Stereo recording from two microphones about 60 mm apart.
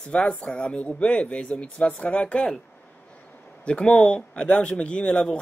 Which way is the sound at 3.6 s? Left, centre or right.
Centre.